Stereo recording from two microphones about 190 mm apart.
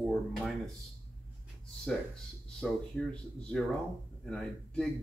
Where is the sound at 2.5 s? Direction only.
5° left (ahead or behind).